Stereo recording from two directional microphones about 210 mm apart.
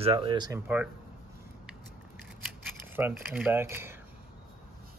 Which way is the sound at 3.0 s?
10° right (ahead or behind).